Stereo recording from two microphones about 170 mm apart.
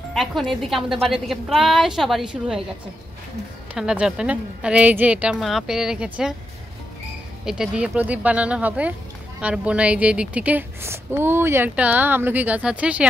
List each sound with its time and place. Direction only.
0.1 s a woman's voice: centre (ahead or behind)
3.7 s a woman's voice: 5° right (ahead or behind)
7.4 s a woman's voice: 5° right (ahead or behind)